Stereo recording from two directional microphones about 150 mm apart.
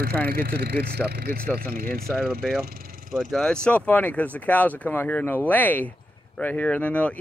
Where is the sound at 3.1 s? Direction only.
5° left (ahead or behind).